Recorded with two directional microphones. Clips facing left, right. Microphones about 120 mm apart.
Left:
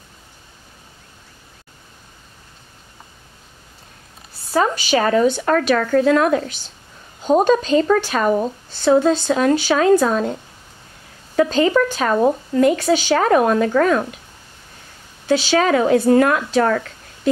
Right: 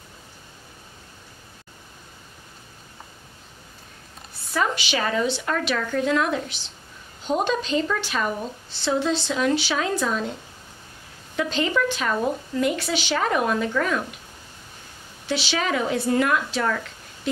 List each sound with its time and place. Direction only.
4.5 s a woman's voice: 40° left (ahead or behind)
11.3 s a woman's voice: 45° left (ahead or behind)
15.2 s a woman's voice: 45° left (ahead or behind)